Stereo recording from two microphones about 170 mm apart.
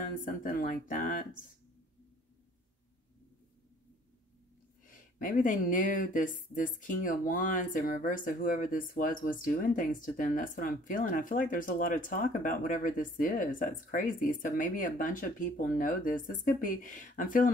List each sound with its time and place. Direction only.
0.2 s speech: 55° left (ahead or behind)
4.8 s speech: 55° left (ahead or behind)